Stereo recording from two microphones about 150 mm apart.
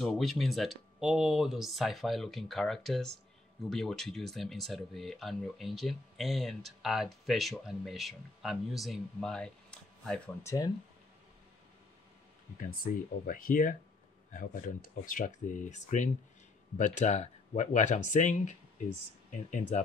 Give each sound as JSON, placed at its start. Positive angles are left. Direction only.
{"t": 0.0, "sound": "speech", "side_deg": 0}
{"t": 10.4, "sound": "speech", "side_deg": 20}
{"t": 12.5, "sound": "speech", "side_deg": 70}